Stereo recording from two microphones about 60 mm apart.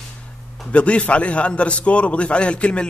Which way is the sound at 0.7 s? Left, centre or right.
Centre.